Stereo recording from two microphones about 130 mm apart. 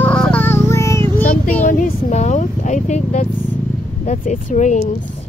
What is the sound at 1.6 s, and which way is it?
Speech, 85° left.